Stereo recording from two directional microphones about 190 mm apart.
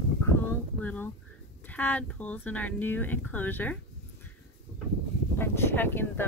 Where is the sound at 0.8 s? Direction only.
10° left (ahead or behind).